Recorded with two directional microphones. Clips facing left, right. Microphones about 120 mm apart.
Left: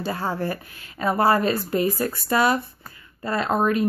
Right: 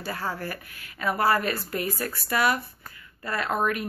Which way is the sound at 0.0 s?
25° left (ahead or behind).